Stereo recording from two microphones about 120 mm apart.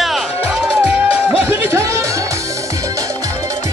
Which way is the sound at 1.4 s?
20° right (ahead or behind).